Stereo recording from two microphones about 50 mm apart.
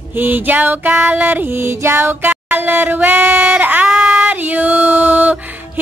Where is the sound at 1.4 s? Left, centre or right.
Right.